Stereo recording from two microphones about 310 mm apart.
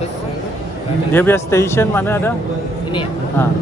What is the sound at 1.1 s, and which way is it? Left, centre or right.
Speech, centre.